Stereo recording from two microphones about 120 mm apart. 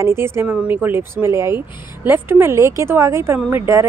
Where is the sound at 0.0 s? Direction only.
20° right (ahead or behind).